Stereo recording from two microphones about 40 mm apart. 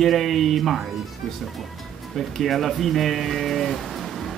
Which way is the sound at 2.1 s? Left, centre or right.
Centre.